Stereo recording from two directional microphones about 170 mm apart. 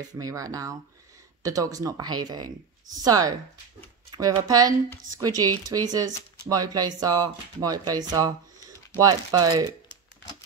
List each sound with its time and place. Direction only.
0.1 s speech: 20° right (ahead or behind)